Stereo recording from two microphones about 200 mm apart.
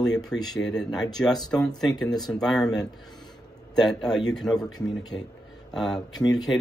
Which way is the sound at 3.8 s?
Centre (ahead or behind).